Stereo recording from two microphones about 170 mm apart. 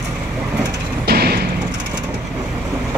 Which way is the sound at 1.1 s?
65° right (ahead or behind).